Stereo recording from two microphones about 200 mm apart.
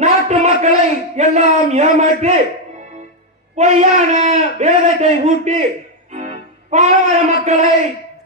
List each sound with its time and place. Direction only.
0.0 s a sound: 35° right (ahead or behind)
3.5 s a man's voice: 35° right (ahead or behind)
6.1 s music: 35° right (ahead or behind)